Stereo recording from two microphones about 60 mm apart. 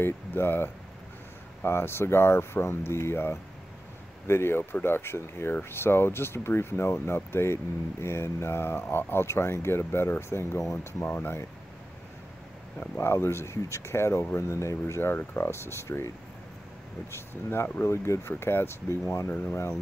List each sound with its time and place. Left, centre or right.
0.0 s speech: left
12.9 s speech: left
17.1 s speech: left
18.3 s speech: left